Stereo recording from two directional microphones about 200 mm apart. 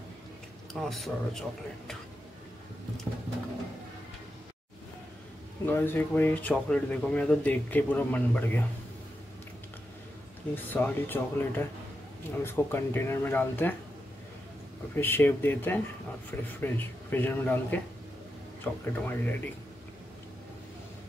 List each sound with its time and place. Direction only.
0.7 s speech: centre (ahead or behind)
5.7 s speech: 10° left (ahead or behind)
10.5 s speech: 10° left (ahead or behind)
15.0 s speech: 10° left (ahead or behind)